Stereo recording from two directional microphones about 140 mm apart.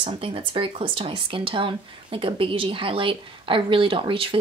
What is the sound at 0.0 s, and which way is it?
Speech, 40° right (ahead or behind).